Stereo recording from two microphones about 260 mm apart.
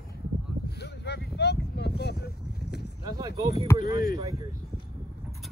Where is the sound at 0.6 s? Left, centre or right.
Left.